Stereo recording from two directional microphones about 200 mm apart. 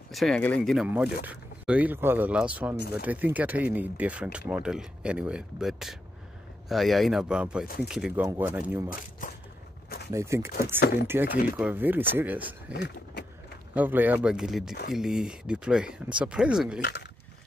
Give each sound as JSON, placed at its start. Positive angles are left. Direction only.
{"t": 0.1, "sound": "speech", "side_deg": 0}
{"t": 7.6, "sound": "speech", "side_deg": 45}
{"t": 7.9, "sound": "speech", "side_deg": -5}
{"t": 9.2, "sound": "a sound", "side_deg": 40}
{"t": 10.1, "sound": "speech", "side_deg": -15}
{"t": 13.7, "sound": "speech", "side_deg": -10}
{"t": 16.8, "sound": "speech", "side_deg": 55}